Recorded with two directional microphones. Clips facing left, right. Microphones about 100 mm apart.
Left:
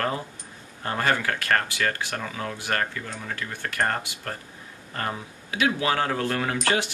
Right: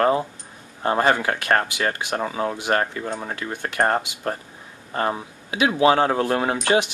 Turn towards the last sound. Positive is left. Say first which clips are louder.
# right 5 dB
turn(degrees=-20)  # may be behind; listen again after turning